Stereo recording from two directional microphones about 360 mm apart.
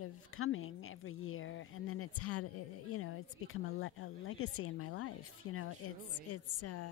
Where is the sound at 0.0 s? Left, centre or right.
Left.